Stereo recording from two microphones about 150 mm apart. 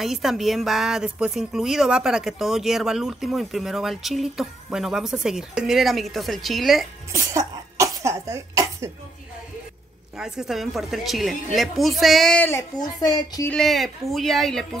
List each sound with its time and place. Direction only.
0.0 s a woman's voice: centre (ahead or behind)
7.1 s speech: 20° right (ahead or behind)
10.1 s a woman's voice: 5° right (ahead or behind)
12.7 s speech: 25° left (ahead or behind)
13.5 s a woman's voice: centre (ahead or behind)